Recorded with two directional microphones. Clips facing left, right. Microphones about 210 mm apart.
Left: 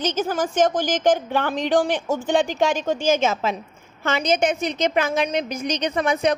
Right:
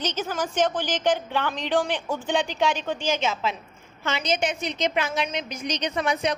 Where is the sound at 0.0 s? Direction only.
45° left (ahead or behind).